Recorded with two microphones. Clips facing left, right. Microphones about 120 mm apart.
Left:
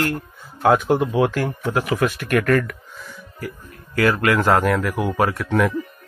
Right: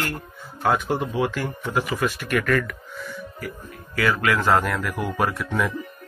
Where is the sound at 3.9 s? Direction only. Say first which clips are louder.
Left 4 dB; 50° left (ahead or behind).